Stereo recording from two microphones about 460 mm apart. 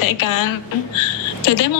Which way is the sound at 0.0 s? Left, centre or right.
Left.